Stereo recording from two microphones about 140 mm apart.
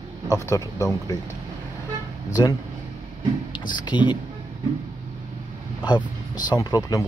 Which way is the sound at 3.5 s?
30° left (ahead or behind).